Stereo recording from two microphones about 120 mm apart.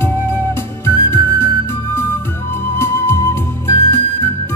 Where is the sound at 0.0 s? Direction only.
20° left (ahead or behind).